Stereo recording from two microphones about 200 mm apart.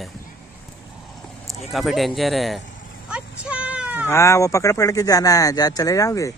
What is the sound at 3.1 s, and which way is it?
Sheep, 5° right (ahead or behind).